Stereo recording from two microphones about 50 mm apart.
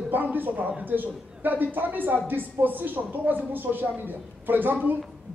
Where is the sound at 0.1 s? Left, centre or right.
Right.